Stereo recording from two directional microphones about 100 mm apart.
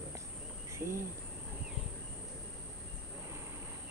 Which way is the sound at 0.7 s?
25° right (ahead or behind).